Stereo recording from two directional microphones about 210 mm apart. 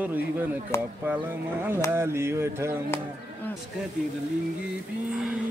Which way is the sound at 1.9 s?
10° right (ahead or behind).